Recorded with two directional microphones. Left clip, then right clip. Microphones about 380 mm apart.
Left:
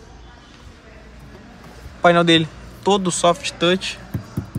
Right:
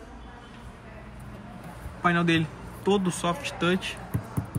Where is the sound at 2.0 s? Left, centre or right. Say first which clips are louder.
Left 10 dB; centre.